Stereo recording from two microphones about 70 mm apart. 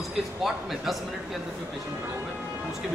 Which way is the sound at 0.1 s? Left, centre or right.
Centre.